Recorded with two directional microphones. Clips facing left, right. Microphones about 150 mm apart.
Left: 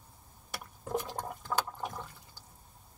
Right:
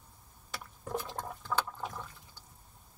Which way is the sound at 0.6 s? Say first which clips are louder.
Left 2 dB; 15° left (ahead or behind).